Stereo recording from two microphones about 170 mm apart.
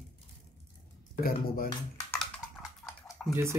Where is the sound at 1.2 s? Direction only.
60° left (ahead or behind).